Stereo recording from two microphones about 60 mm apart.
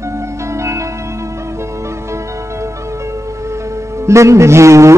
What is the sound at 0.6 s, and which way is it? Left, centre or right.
Music, right.